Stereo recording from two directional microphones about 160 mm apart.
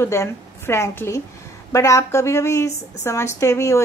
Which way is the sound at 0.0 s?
15° left (ahead or behind).